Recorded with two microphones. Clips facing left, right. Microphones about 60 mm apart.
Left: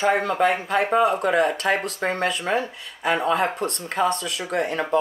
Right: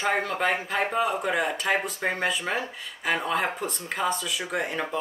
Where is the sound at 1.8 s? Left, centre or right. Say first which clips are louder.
Left 3 dB; left.